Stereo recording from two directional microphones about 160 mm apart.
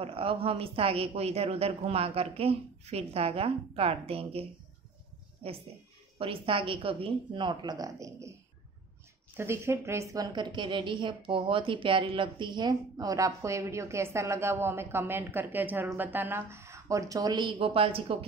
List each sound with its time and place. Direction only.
0.0 s a woman's voice: 35° right (ahead or behind)
6.1 s a woman's voice: 35° right (ahead or behind); by 8.4 s 20° right (ahead or behind)
9.4 s a woman's voice: 15° right (ahead or behind); by 18.2 s 35° right (ahead or behind)